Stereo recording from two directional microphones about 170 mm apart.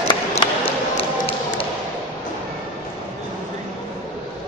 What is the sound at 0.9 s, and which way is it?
Music, 35° left (ahead or behind).